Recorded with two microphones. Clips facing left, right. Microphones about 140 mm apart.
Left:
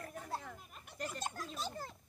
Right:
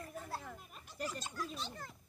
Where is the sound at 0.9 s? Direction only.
60° left (ahead or behind).